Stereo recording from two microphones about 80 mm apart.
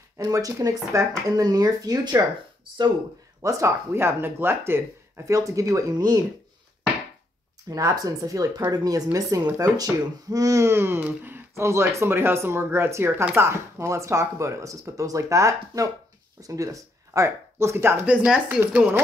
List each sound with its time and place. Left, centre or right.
0.3 s speech: right
3.4 s speech: right
5.2 s speech: right
7.7 s speech: right
18.0 s speech: centre